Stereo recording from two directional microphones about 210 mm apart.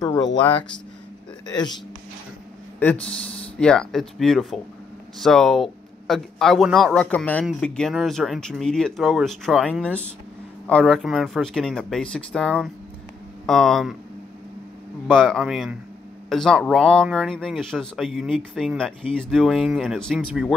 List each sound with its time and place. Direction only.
0.0 s speech: 20° left (ahead or behind)
2.8 s speech: 5° left (ahead or behind)
15.0 s speech: centre (ahead or behind)